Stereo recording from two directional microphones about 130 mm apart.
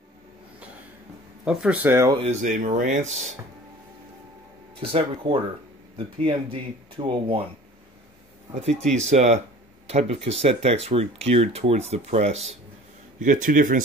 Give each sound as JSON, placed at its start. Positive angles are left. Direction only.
{"t": 1.4, "sound": "speech", "side_deg": -5}
{"t": 1.8, "sound": "speech", "side_deg": -15}
{"t": 2.1, "sound": "speech", "side_deg": -60}
{"t": 4.7, "sound": "speech", "side_deg": -45}
{"t": 9.1, "sound": "speech", "side_deg": -60}
{"t": 13.2, "sound": "speech", "side_deg": -90}